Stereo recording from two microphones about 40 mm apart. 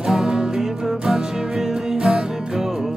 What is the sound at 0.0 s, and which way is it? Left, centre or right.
Music, centre.